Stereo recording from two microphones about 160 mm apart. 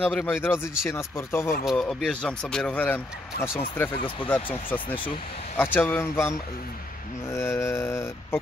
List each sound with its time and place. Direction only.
0.0 s speech: 10° left (ahead or behind)
1.6 s speech: centre (ahead or behind)
3.9 s speech: 35° left (ahead or behind)
4.3 s speech: 10° left (ahead or behind)